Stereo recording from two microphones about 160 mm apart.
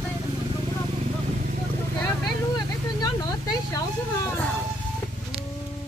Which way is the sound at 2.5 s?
25° left (ahead or behind).